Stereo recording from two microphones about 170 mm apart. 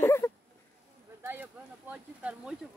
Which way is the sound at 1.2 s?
10° right (ahead or behind).